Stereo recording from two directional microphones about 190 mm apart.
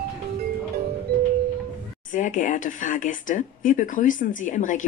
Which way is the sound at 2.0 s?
45° left (ahead or behind).